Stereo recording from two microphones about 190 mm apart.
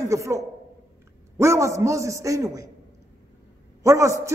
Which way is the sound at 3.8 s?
15° right (ahead or behind).